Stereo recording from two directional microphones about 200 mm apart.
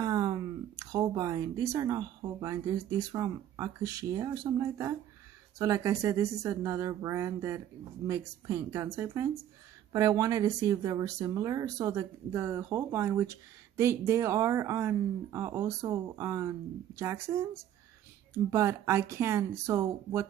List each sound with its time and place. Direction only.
0.0 s speech: 20° right (ahead or behind)
18.3 s speech: 15° right (ahead or behind)